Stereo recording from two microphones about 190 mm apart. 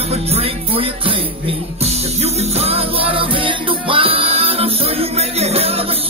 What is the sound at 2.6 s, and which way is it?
Music, 30° right (ahead or behind).